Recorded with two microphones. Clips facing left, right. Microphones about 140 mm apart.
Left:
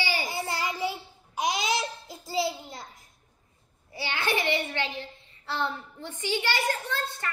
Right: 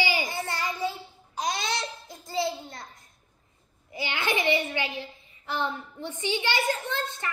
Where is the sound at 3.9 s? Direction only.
20° right (ahead or behind).